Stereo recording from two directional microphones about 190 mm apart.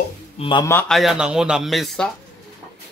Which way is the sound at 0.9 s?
5° right (ahead or behind).